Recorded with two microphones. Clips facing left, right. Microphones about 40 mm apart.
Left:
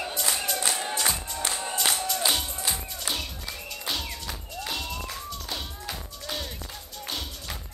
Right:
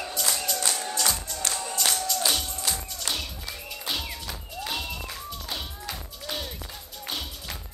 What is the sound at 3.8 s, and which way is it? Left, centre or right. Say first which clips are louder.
Music: even; centre.